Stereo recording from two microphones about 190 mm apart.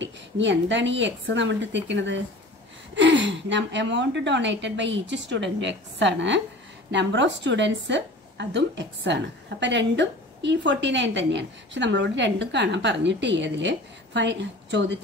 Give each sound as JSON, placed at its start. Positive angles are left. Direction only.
{"t": 0.0, "sound": "a woman's voice", "side_deg": -70}